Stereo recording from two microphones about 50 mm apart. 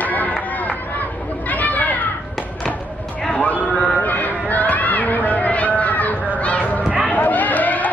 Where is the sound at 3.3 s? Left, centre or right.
Left.